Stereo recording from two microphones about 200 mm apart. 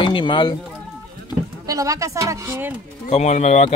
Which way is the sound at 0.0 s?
25° left (ahead or behind).